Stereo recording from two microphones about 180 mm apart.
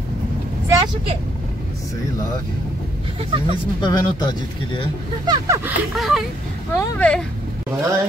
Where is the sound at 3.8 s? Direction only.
25° left (ahead or behind).